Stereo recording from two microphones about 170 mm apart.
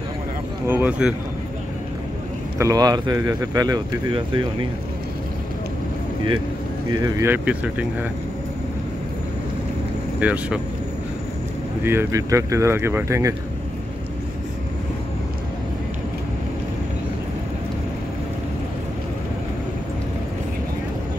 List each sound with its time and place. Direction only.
0.7 s speech: 10° right (ahead or behind)
2.6 s speech: 20° right (ahead or behind)
6.9 s speech: 20° right (ahead or behind)
10.2 s speech: 10° right (ahead or behind)
11.8 s speech: 15° right (ahead or behind)